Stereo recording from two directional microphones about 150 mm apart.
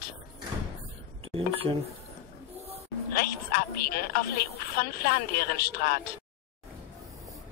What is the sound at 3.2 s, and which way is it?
A woman's voice, 80° left.